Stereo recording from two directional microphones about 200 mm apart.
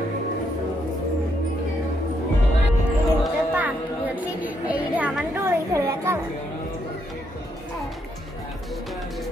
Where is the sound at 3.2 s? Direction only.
10° right (ahead or behind).